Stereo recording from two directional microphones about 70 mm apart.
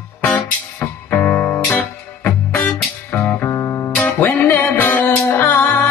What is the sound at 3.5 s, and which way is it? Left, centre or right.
Music, left.